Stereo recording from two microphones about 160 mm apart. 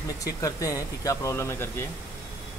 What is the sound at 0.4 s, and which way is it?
Speech, 20° left (ahead or behind).